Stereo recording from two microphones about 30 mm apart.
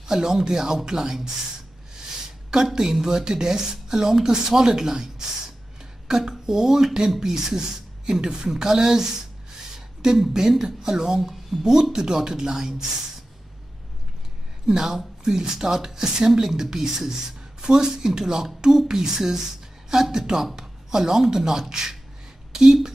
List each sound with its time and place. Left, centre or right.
0.0 s speech: centre
2.5 s speech: right
14.7 s speech: centre
17.6 s speech: right
22.5 s a sound: centre